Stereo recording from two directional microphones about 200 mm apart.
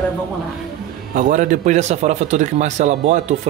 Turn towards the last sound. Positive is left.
turn(degrees=-35)  # may be behind; listen again after turning